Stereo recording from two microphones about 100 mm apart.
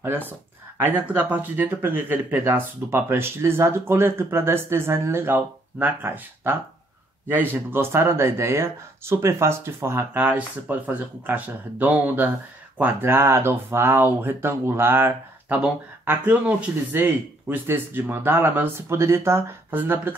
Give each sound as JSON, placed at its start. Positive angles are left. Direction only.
{"t": 1.0, "sound": "speech", "side_deg": -15}